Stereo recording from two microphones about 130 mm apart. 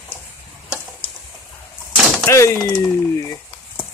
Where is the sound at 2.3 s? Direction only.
20° left (ahead or behind).